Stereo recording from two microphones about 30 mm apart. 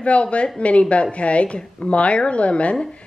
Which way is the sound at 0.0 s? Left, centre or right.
Left.